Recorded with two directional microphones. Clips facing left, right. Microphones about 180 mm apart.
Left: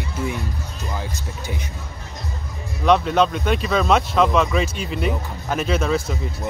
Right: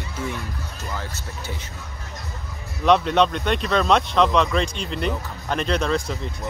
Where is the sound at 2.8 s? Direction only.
Centre (ahead or behind).